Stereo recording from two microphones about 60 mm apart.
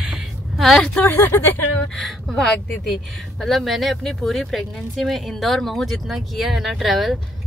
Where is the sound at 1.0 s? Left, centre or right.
Left.